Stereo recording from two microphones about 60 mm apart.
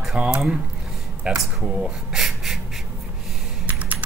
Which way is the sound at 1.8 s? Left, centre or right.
Centre.